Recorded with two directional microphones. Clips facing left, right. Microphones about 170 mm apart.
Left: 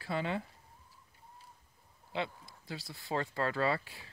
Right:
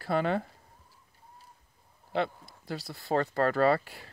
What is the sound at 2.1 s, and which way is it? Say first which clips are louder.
Speech: right 7 dB; 60° right (ahead or behind).